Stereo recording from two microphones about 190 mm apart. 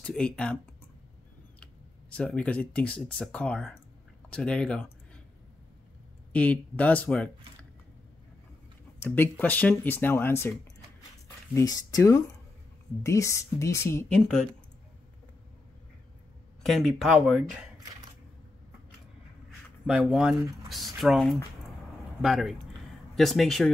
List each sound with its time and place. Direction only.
0.0 s speech: 5° left (ahead or behind)
1.6 s speech: 5° left (ahead or behind)
6.3 s speech: 5° left (ahead or behind)
9.0 s speech: 10° left (ahead or behind)
11.5 s speech: 20° left (ahead or behind)
16.6 s speech: centre (ahead or behind)
19.9 s speech: centre (ahead or behind)